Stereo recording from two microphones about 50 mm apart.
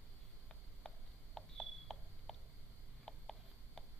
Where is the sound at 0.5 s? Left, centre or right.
Centre.